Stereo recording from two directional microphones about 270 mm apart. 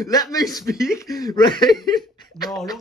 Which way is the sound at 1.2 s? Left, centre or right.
Centre.